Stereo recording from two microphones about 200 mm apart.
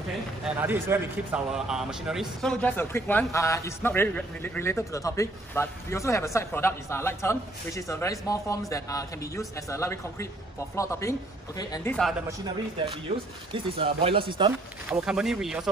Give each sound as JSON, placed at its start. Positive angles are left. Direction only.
{"t": 0.6, "sound": "speech", "side_deg": -10}
{"t": 11.9, "sound": "speech", "side_deg": 0}
{"t": 13.5, "sound": "speech", "side_deg": -30}
{"t": 14.9, "sound": "speech", "side_deg": -5}